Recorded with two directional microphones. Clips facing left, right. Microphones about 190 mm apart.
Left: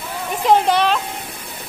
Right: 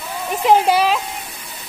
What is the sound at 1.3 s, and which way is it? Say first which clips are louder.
Music: left 3 dB; 55° left (ahead or behind).